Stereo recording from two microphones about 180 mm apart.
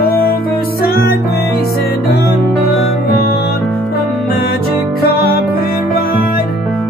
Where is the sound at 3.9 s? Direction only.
60° left (ahead or behind).